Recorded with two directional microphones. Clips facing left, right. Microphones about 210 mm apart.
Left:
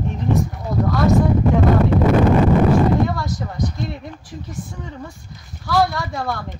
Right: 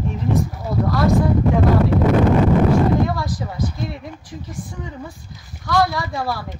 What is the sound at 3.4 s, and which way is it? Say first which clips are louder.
Speech: even; 5° right (ahead or behind).